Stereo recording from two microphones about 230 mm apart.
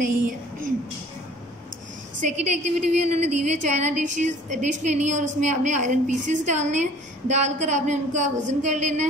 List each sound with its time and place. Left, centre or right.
0.0 s a woman's voice: right
2.5 s a woman's voice: right